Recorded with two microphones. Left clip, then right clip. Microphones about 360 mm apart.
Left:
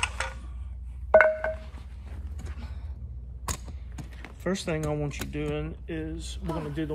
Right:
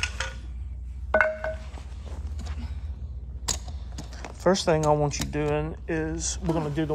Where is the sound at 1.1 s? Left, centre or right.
Centre.